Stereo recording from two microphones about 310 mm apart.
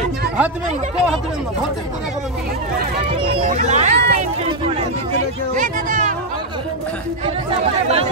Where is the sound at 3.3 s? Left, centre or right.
Right.